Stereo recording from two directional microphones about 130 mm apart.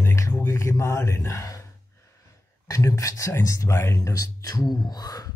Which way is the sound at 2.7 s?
25° left (ahead or behind).